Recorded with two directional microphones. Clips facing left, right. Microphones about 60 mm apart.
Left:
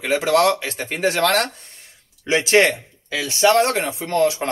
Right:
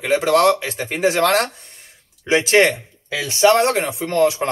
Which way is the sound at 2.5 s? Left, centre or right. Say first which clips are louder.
Left 1 dB; right.